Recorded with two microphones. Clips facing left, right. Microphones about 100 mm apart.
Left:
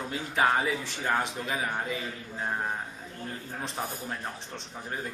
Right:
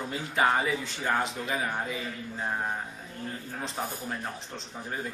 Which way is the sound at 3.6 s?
Centre (ahead or behind).